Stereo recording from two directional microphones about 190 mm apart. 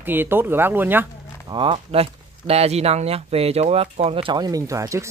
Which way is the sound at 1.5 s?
25° right (ahead or behind).